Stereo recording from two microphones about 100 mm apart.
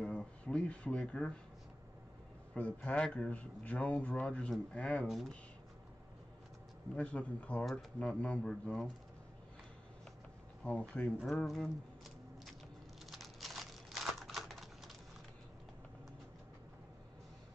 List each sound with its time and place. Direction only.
0.0 s a sound: 10° left (ahead or behind)
2.5 s speech: 15° left (ahead or behind)
7.0 s speech: 15° left (ahead or behind)
10.6 s speech: 10° left (ahead or behind)
13.0 s computer keyboard: centre (ahead or behind)